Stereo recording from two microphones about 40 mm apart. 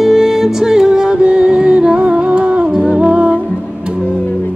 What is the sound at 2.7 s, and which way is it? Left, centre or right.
Music, centre.